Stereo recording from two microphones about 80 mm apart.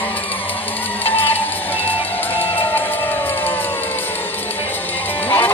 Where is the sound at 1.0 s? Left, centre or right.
Left.